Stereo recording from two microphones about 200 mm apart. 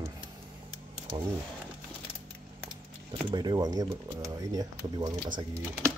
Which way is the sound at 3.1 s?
20° right (ahead or behind).